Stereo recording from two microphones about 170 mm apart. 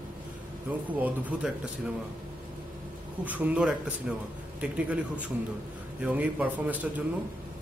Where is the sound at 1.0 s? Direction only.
10° right (ahead or behind).